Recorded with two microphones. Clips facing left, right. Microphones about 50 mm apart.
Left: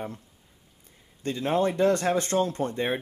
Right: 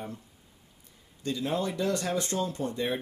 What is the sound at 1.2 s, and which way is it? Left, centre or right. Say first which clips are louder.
Speech: left 5 dB; left.